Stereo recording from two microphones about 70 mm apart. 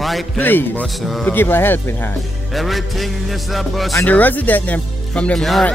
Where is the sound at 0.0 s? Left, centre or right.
Centre.